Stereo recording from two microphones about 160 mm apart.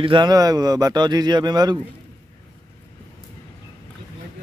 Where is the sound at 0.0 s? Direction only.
30° right (ahead or behind).